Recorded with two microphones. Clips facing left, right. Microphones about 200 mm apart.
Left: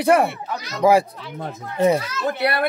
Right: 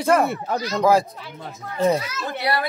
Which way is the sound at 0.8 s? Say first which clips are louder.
Left 3 dB; 15° left (ahead or behind).